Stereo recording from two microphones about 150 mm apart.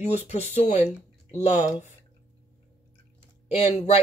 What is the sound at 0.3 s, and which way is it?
Speech, 45° left (ahead or behind).